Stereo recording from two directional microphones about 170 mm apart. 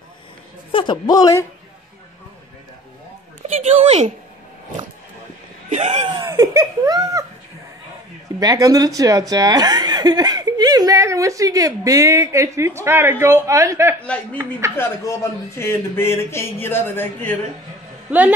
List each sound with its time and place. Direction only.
0.7 s a woman's voice: 30° left (ahead or behind)
3.5 s a woman's voice: 40° right (ahead or behind)
5.7 s speech: 45° right (ahead or behind)
6.0 s speech: 25° right (ahead or behind)
8.4 s speech: 20° right (ahead or behind)
14.0 s a man's voice: 5° left (ahead or behind)
18.1 s speech: 5° right (ahead or behind)